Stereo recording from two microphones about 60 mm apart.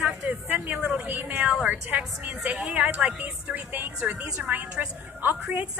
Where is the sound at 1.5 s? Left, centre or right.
Centre.